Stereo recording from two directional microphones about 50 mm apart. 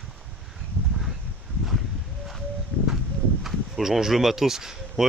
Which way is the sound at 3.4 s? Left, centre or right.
Centre.